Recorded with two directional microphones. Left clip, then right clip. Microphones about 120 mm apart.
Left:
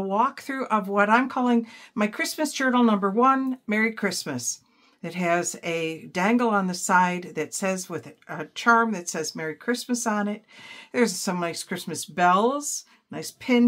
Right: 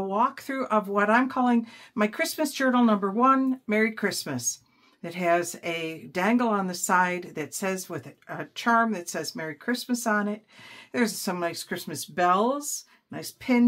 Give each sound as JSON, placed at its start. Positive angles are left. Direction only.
{"t": 0.1, "sound": "speech", "side_deg": 35}